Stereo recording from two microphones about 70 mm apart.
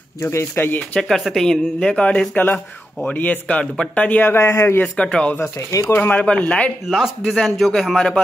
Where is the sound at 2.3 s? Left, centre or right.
Left.